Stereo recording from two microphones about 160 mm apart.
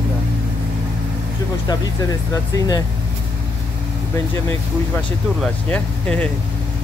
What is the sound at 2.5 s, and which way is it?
Speech, 25° left (ahead or behind).